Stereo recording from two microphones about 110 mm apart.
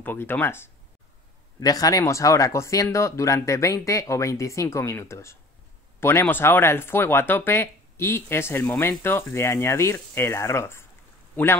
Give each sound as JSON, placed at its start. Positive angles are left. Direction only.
{"t": 0.0, "sound": "speech", "side_deg": 20}
{"t": 1.6, "sound": "speech", "side_deg": 35}